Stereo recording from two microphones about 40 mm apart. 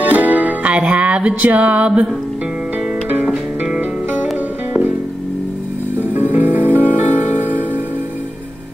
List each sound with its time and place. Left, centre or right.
0.0 s music: right
6.1 s music: right